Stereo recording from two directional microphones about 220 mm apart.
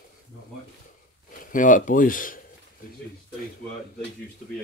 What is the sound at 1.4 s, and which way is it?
Speech, 35° left (ahead or behind).